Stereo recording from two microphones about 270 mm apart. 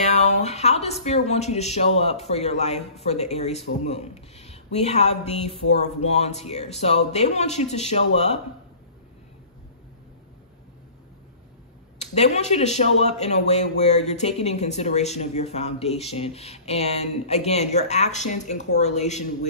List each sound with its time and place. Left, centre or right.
0.0 s a man's voice: left
12.0 s a man's voice: left